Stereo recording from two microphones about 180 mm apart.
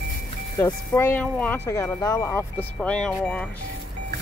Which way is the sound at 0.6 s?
15° left (ahead or behind).